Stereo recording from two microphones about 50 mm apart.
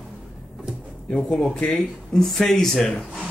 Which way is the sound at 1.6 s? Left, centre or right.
Centre.